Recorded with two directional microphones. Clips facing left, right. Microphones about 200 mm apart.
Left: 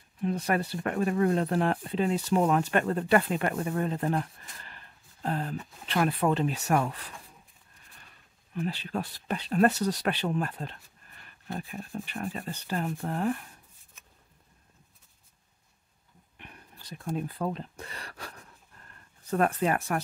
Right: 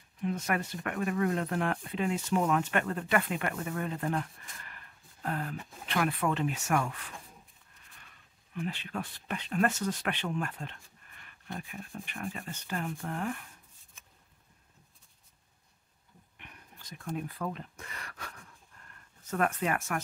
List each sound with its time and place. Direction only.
0.2 s speech: 35° left (ahead or behind)
8.5 s speech: 35° left (ahead or behind)
16.3 s speech: 35° left (ahead or behind)